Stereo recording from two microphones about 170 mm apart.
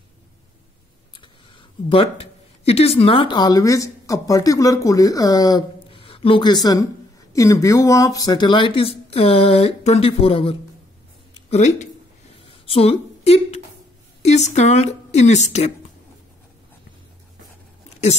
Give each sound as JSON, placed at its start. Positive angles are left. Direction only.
{"t": 1.9, "sound": "speech", "side_deg": 35}
{"t": 11.5, "sound": "speech", "side_deg": 45}
{"t": 12.4, "sound": "a sound", "side_deg": 30}
{"t": 14.2, "sound": "speech", "side_deg": 40}